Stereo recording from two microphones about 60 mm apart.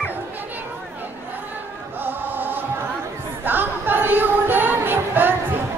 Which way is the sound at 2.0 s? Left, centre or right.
Right.